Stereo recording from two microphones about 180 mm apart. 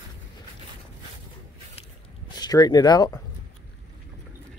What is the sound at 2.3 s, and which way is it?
Speech, 20° left (ahead or behind).